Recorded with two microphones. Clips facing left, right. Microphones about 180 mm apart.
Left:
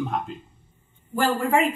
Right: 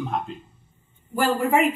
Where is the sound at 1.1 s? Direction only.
10° right (ahead or behind).